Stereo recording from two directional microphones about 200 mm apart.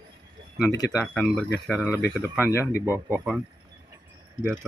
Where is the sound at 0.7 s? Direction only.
15° left (ahead or behind).